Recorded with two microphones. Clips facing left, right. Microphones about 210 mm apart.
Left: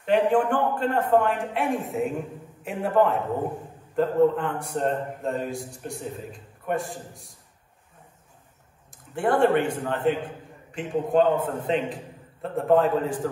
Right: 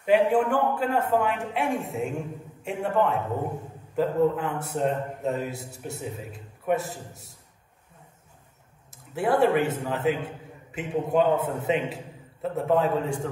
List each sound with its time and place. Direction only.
0.0 s a man's voice: 10° right (ahead or behind)
9.1 s a man's voice: 5° right (ahead or behind)